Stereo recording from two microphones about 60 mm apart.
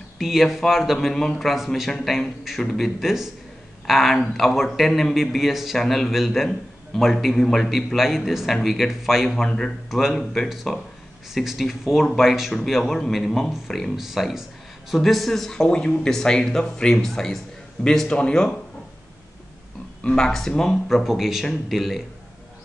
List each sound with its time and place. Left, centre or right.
0.2 s a man's voice: centre
3.0 s a man's voice: centre
20.0 s a man's voice: centre